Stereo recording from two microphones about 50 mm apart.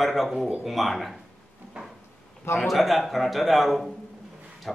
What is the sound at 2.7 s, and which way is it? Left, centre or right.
Speech, centre.